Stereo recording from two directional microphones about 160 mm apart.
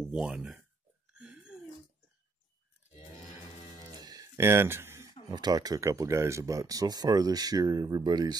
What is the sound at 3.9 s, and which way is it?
Speech, 25° right (ahead or behind).